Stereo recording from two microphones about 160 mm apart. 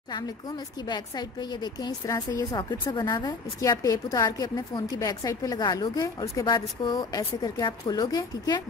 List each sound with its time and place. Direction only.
0.8 s a woman's voice: 25° left (ahead or behind)